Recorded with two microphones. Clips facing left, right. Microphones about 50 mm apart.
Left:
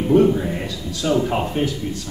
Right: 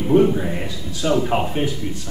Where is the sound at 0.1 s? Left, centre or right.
Centre.